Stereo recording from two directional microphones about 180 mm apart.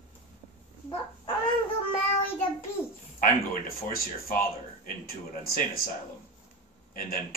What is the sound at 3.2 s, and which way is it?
Speech, 55° left (ahead or behind).